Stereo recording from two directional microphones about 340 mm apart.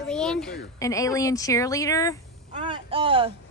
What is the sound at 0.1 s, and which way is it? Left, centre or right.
Speech, centre.